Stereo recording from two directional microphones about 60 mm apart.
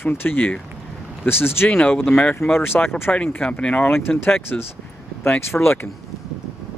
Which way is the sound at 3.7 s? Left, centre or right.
Left.